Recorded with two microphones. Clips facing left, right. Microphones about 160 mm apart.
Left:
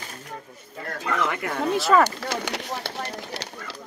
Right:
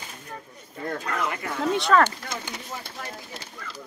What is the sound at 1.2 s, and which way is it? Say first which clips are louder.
Speech: left 3 dB; 60° left (ahead or behind).